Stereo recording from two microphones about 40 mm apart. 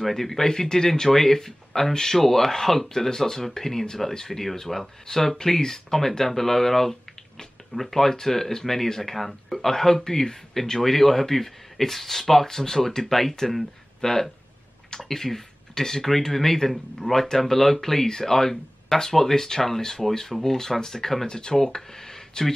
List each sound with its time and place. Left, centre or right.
0.0 s speech: centre